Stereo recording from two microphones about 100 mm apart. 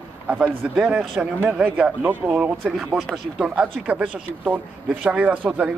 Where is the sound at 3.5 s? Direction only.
15° right (ahead or behind).